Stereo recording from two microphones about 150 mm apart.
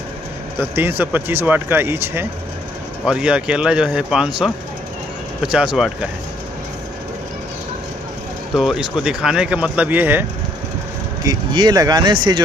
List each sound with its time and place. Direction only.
0.6 s speech: 15° right (ahead or behind)
8.5 s speech: 5° right (ahead or behind)
11.2 s speech: 25° right (ahead or behind)